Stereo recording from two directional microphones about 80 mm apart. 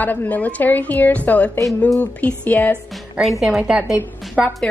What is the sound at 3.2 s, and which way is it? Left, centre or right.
Speech, centre.